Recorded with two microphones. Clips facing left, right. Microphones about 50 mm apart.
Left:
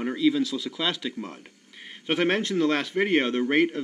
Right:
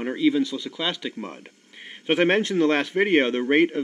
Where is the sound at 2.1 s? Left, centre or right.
Right.